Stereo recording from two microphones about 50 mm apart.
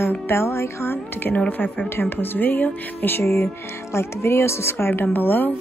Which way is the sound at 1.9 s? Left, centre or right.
Left.